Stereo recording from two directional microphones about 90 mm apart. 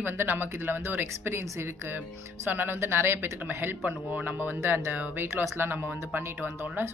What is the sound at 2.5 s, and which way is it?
Speech, 20° right (ahead or behind).